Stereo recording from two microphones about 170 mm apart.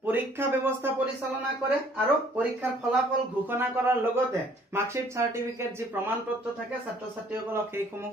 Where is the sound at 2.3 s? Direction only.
10° right (ahead or behind).